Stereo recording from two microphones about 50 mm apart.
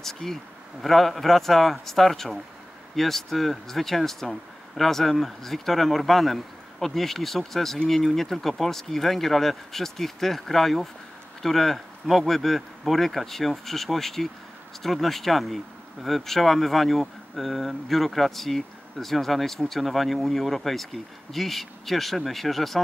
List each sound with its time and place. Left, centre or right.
0.0 s speech: centre